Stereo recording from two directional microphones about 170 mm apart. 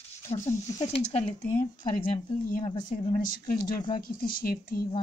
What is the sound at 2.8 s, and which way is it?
Speech, 50° left (ahead or behind).